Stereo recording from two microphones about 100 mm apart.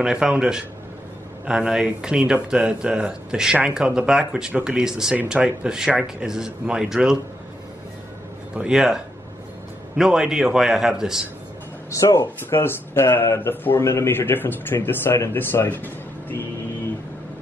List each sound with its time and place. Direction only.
0.0 s speech: 5° right (ahead or behind)
8.5 s a man's voice: 5° right (ahead or behind)
11.9 s speech: 30° left (ahead or behind)